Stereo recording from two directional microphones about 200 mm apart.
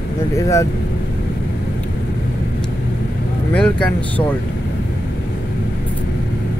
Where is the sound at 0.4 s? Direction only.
15° left (ahead or behind).